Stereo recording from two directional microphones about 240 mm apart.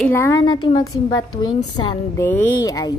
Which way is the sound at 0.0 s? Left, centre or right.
Centre.